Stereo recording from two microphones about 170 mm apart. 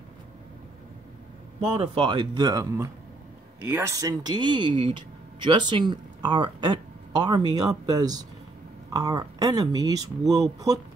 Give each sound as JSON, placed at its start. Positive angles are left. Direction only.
{"t": 1.8, "sound": "speech", "side_deg": -30}